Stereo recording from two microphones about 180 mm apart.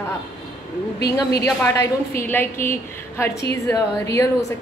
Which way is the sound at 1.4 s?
15° left (ahead or behind).